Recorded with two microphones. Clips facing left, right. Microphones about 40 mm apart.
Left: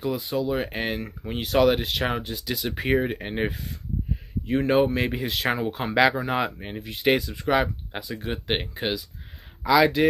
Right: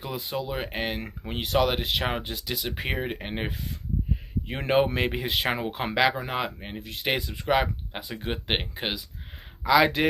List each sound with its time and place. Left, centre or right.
0.0 s speech: centre
1.0 s speech: centre
1.5 s speech: centre
4.5 s speech: right
5.9 s speech: centre
8.1 s speech: centre